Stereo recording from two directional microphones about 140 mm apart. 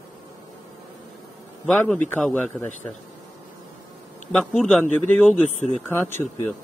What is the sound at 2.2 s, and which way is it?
Speech, 10° left (ahead or behind).